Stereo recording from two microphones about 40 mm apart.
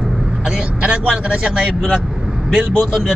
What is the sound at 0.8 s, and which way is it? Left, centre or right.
Speech, right.